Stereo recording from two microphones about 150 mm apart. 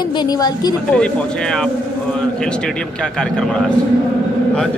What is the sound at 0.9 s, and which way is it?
Speech, 5° left (ahead or behind).